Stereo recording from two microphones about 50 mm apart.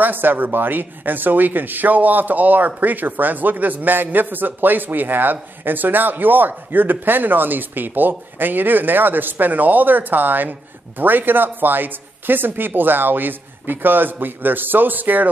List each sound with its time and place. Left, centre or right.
0.0 s speech: right